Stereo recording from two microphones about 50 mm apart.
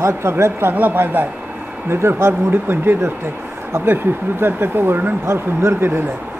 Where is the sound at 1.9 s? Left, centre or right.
Right.